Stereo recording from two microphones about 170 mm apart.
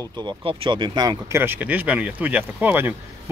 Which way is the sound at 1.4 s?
10° right (ahead or behind).